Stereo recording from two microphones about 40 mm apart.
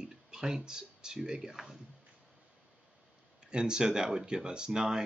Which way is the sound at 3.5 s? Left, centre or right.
Centre.